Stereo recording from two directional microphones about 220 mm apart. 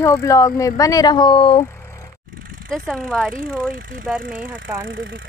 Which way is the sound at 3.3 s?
40° right (ahead or behind).